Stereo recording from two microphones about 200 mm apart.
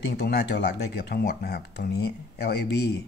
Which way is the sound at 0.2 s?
55° left (ahead or behind).